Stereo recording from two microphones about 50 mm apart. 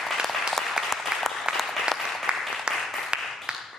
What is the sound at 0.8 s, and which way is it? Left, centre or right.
Applause, centre.